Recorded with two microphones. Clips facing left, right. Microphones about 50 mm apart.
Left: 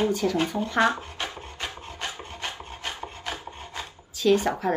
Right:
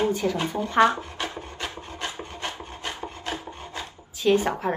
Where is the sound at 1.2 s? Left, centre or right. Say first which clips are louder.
Right 2 dB; right.